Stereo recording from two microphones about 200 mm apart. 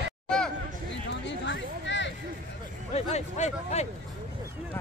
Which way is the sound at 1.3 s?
65° left (ahead or behind).